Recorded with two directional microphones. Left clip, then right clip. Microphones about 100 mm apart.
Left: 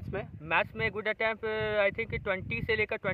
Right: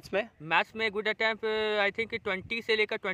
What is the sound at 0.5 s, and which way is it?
Speech, 25° right (ahead or behind).